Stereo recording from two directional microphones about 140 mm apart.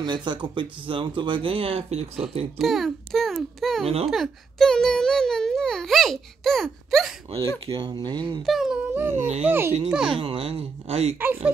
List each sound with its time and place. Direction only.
0.0 s speech: 35° right (ahead or behind)
2.6 s a child's voice: centre (ahead or behind)
7.6 s speech: 35° right (ahead or behind)
8.4 s a child's voice: centre (ahead or behind)
9.1 s speech: 50° right (ahead or behind)
9.5 s speech: 15° right (ahead or behind)
10.1 s speech: 40° right (ahead or behind)
11.1 s speech: 15° right (ahead or behind)